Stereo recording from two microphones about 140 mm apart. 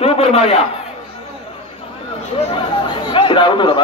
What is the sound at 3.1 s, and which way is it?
Speech, 35° left (ahead or behind).